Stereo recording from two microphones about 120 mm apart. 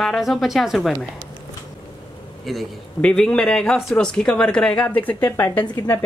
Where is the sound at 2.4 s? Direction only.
5° left (ahead or behind).